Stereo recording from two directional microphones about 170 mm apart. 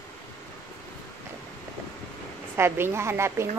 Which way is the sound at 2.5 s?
15° right (ahead or behind).